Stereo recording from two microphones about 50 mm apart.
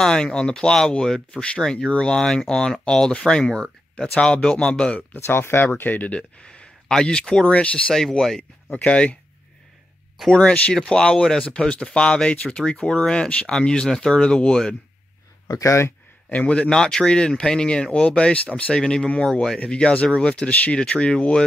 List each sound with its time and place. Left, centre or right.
0.0 s speech: centre
5.2 s speech: left
5.9 s speech: left
7.4 s speech: left
7.9 s speech: centre
8.7 s speech: left
10.3 s speech: left
10.7 s speech: centre
15.5 s speech: left
16.3 s speech: left
18.8 s speech: centre